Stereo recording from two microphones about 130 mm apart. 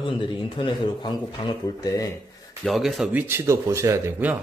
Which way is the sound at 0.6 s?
35° left (ahead or behind).